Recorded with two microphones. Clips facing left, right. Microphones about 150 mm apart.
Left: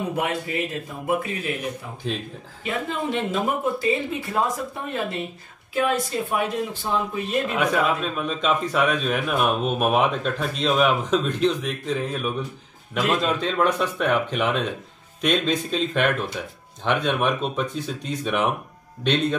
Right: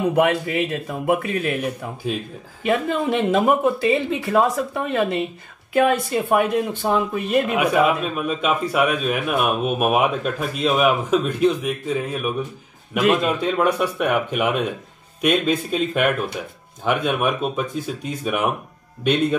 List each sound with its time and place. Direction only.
0.1 s speech: 80° right
2.0 s a man's voice: 10° right (ahead or behind)
2.6 s speech: 65° right (ahead or behind)
5.7 s speech: 60° right (ahead or behind)
7.5 s a man's voice: 10° right (ahead or behind)